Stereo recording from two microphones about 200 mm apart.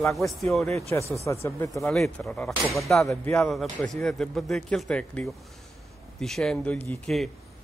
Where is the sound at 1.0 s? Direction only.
15° right (ahead or behind).